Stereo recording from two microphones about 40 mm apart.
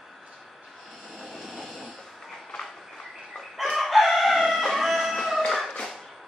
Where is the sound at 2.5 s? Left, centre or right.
Centre.